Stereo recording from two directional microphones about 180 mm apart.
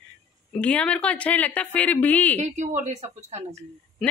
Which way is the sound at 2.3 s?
40° right (ahead or behind).